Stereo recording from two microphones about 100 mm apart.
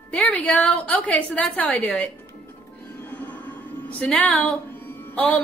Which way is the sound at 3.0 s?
20° left (ahead or behind).